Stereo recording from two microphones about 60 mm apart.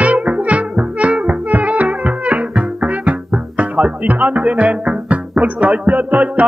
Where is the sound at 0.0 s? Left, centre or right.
Right.